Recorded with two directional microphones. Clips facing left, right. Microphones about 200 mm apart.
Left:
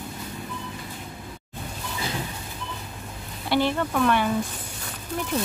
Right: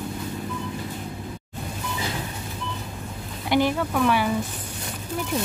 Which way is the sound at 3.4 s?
15° right (ahead or behind).